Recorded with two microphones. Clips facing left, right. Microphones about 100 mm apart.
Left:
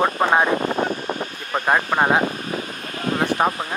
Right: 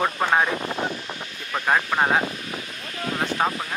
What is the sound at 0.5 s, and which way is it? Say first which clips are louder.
Vehicle: left 6 dB; 50° left (ahead or behind).